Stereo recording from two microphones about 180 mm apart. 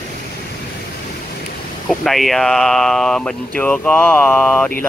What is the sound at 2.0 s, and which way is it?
Speech, centre (ahead or behind).